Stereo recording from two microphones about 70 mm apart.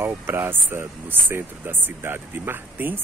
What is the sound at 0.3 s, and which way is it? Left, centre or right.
Speech, right.